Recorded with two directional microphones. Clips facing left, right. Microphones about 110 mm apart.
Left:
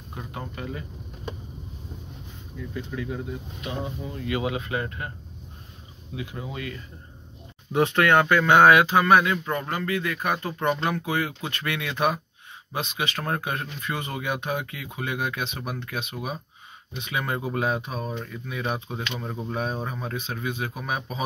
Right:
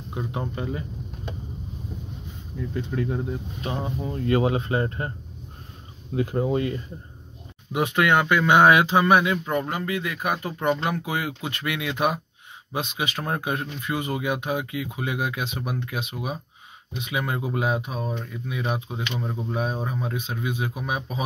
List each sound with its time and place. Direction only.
0.1 s speech: 20° right (ahead or behind)
3.6 s speech: 35° right (ahead or behind)
6.1 s speech: 45° right (ahead or behind)
7.7 s speech: 10° right (ahead or behind)